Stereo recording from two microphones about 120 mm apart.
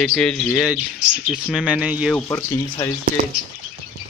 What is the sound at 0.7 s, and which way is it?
Speech, 5° right (ahead or behind).